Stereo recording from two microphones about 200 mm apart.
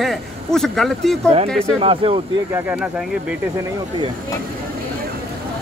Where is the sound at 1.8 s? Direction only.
25° right (ahead or behind).